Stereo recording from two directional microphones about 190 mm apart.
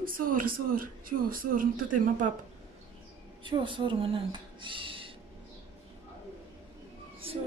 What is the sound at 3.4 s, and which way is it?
Speech, 25° right (ahead or behind).